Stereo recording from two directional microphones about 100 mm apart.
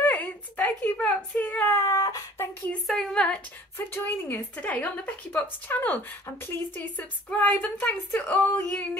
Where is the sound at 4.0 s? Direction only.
20° left (ahead or behind).